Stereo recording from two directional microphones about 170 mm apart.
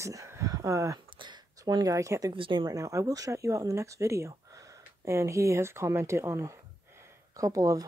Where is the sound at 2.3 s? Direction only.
30° right (ahead or behind).